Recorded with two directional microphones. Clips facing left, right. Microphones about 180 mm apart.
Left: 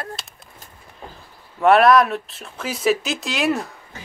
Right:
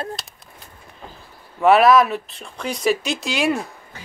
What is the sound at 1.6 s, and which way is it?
Speech, centre (ahead or behind).